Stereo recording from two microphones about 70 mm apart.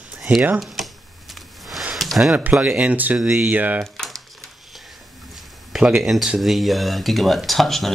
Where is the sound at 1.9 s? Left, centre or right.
Centre.